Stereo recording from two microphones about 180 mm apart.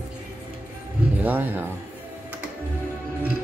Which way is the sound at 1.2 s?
10° right (ahead or behind).